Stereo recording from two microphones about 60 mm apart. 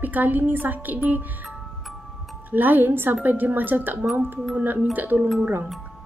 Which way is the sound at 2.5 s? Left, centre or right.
Right.